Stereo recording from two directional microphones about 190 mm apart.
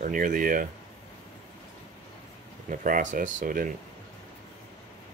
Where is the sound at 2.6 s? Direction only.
45° right (ahead or behind).